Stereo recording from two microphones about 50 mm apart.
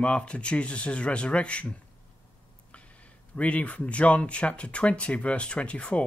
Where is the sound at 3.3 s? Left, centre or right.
Left.